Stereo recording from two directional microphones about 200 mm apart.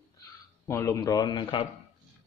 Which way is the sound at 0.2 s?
15° left (ahead or behind).